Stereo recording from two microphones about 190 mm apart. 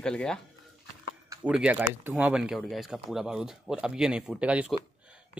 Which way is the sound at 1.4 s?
5° right (ahead or behind).